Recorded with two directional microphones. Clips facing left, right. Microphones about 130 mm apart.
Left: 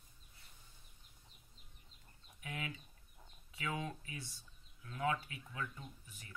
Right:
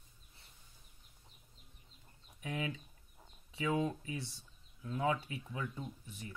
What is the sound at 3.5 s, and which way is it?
Speech, 25° right (ahead or behind).